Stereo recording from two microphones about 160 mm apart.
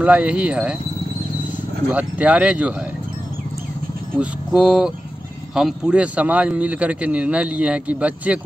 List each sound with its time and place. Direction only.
0.0 s speech: 5° right (ahead or behind)
1.9 s speech: 10° right (ahead or behind)
4.2 s speech: 5° right (ahead or behind)